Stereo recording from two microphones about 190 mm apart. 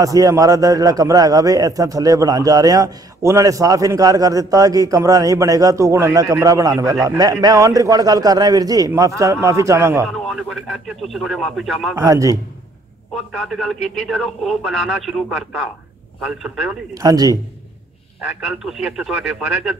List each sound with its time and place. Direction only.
0.0 s a man's voice: 20° right (ahead or behind)
10.0 s speech: centre (ahead or behind)
11.9 s a man's voice: 15° right (ahead or behind)
13.1 s speech: centre (ahead or behind)
16.9 s speech: 20° right (ahead or behind)
18.4 s speech: 5° right (ahead or behind)